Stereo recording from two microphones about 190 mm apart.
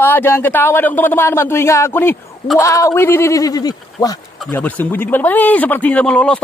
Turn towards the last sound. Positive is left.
turn(degrees=5)  # may be behind; listen again after turning